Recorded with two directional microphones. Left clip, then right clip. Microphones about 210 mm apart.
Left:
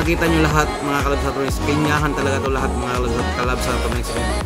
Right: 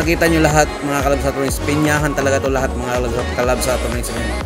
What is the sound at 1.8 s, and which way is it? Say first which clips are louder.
Speech: right 4 dB; 15° right (ahead or behind).